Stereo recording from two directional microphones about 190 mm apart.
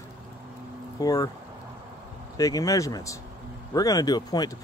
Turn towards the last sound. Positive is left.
turn(degrees=20)  # may be behind; listen again after turning